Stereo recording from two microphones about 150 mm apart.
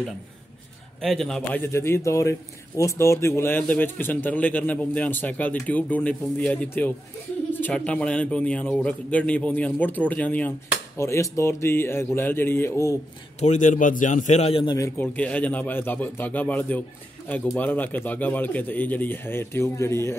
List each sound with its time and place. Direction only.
1.0 s a man's voice: 5° left (ahead or behind)
1.6 s a man's voice: 15° left (ahead or behind)
11.0 s a man's voice: 20° left (ahead or behind)
13.4 s a man's voice: 55° left (ahead or behind); by 14.8 s 35° left (ahead or behind)
14.8 s a man's voice: 10° left (ahead or behind)